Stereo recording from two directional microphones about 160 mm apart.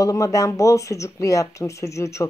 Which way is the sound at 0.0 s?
20° left (ahead or behind).